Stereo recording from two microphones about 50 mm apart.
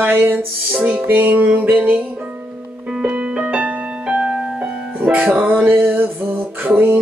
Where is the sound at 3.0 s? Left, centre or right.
Centre.